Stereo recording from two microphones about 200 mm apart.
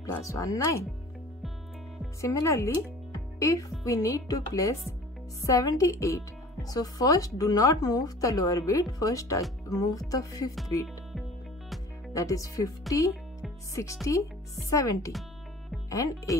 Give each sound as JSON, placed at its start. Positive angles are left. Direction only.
{"t": 0.0, "sound": "speech", "side_deg": 15}
{"t": 2.2, "sound": "speech", "side_deg": 15}
{"t": 12.1, "sound": "speech", "side_deg": 15}
{"t": 14.0, "sound": "speech", "side_deg": 15}